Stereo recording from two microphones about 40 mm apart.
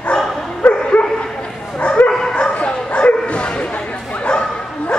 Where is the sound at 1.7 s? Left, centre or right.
Left.